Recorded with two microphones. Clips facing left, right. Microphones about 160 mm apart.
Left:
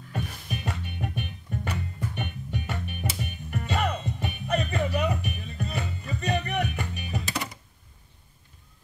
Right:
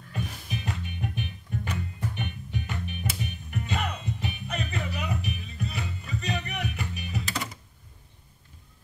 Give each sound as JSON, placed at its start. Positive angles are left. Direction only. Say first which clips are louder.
{"t": 0.1, "sound": "music", "louder": "left 1 dB", "side_deg": 55}